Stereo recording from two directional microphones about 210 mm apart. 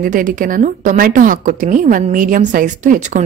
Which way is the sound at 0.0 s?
40° right (ahead or behind).